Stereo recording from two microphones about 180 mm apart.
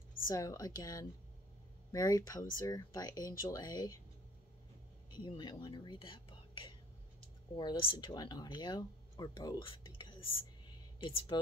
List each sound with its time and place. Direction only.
0.3 s speech: 20° left (ahead or behind)
5.1 s speech: 25° left (ahead or behind)